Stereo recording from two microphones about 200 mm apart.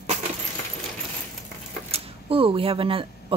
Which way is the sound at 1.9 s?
25° right (ahead or behind).